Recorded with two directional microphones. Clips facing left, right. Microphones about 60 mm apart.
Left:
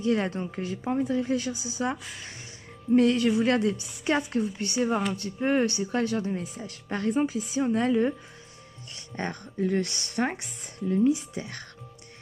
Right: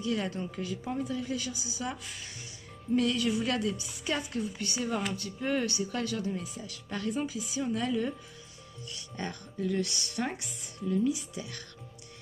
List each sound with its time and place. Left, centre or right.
0.0 s speech: left